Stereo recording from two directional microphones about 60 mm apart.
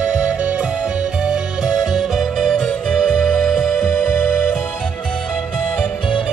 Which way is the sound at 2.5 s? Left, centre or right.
Centre.